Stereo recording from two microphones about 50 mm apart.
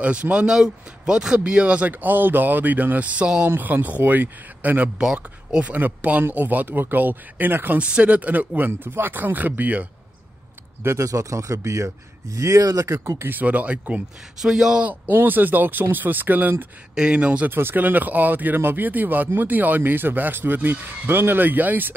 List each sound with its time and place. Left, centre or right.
0.0 s speech: right
1.9 s speech: right
4.9 s speech: centre
6.3 s speech: right
7.8 s speech: right
10.8 s speech: right
12.4 s speech: right
13.3 s speech: right
14.4 s speech: centre
15.2 s speech: right
16.9 s speech: right
17.5 s speech: right